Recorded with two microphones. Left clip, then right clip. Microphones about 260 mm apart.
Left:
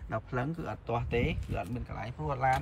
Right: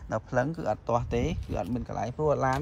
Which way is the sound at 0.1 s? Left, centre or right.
Centre.